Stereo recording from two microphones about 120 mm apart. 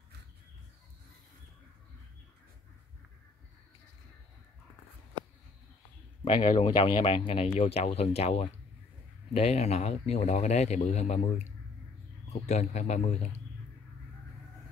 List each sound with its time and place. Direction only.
6.2 s a man's voice: 45° left (ahead or behind); by 13.4 s 70° left (ahead or behind)